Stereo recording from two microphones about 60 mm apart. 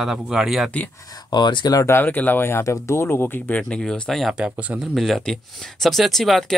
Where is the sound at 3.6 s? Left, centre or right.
Centre.